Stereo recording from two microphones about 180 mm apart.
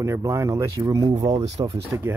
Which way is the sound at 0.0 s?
15° right (ahead or behind).